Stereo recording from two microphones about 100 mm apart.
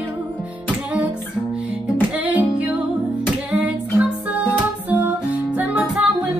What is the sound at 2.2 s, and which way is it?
Music, 15° right (ahead or behind).